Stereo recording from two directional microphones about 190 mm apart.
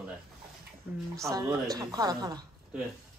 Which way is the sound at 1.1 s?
15° right (ahead or behind).